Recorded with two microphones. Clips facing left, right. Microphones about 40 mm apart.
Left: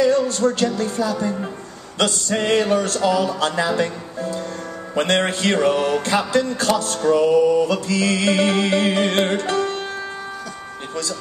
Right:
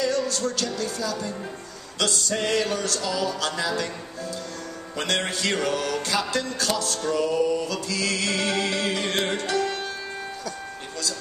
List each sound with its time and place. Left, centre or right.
0.0 s music: left